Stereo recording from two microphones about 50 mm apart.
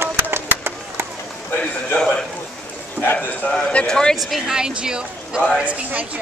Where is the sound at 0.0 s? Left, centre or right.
Right.